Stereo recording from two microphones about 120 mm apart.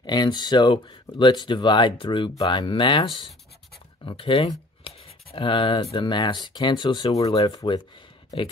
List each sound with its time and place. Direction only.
0.0 s speech: 35° left (ahead or behind)